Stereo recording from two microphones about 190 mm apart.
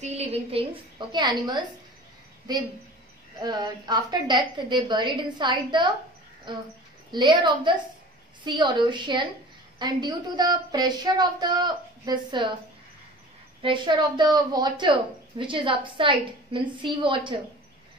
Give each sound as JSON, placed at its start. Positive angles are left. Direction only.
{"t": 0.0, "sound": "a woman's voice", "side_deg": -35}
{"t": 13.6, "sound": "a woman's voice", "side_deg": -25}